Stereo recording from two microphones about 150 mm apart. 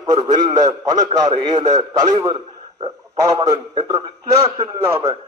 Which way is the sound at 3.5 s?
25° right (ahead or behind).